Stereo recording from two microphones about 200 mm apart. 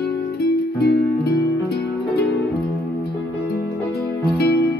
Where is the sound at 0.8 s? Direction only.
50° left (ahead or behind).